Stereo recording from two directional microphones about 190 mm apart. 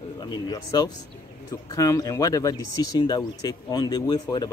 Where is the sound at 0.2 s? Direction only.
20° left (ahead or behind).